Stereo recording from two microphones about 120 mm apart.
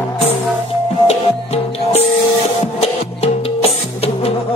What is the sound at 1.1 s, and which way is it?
Music, 60° left (ahead or behind).